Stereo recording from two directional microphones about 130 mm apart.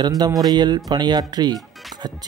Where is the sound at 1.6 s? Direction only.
Centre (ahead or behind).